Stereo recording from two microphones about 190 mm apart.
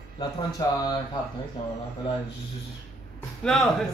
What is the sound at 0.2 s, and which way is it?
Speech, 20° left (ahead or behind).